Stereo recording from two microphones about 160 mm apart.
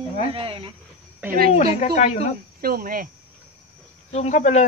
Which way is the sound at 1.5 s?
40° left (ahead or behind).